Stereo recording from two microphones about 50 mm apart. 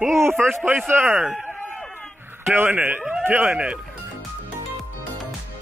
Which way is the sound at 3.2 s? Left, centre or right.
Right.